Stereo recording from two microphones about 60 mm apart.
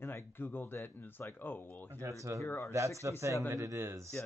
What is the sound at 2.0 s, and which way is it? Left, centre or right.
Speech, right.